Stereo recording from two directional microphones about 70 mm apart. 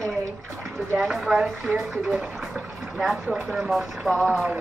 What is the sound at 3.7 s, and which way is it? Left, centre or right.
Speech, centre.